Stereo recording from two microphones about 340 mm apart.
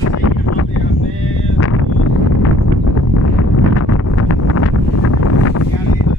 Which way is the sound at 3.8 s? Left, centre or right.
Left.